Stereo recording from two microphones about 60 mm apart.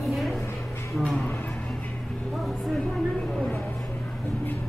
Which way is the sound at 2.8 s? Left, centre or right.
Centre.